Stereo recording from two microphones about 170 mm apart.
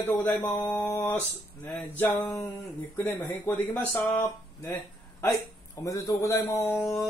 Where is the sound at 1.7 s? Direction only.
5° left (ahead or behind).